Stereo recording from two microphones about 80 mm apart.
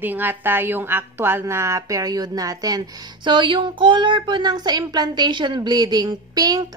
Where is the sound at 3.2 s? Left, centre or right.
Right.